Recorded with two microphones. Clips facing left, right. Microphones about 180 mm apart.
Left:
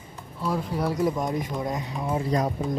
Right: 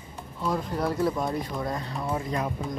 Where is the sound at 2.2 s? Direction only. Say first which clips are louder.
Left 5 dB; 35° left (ahead or behind).